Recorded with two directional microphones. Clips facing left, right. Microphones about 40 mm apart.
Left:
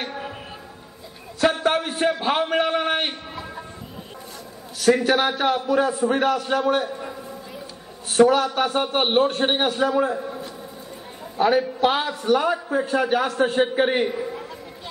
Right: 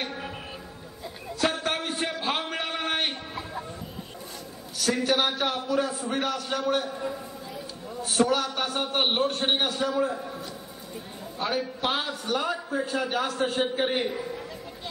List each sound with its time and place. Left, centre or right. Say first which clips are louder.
1.4 s a sound: left 7 dB; centre
5.0 s a man's voice: left 5 dB; left
11.3 s a woman's voice: left 10 dB; left
13.1 s a man's voice: left 6 dB; centre
13.7 s a man's voice: left 6 dB; left